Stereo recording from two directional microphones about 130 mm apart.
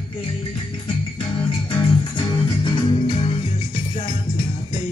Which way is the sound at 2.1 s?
40° left (ahead or behind).